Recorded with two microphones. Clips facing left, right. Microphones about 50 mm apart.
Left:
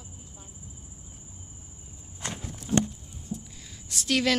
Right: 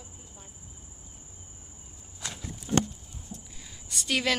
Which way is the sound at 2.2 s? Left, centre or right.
Left.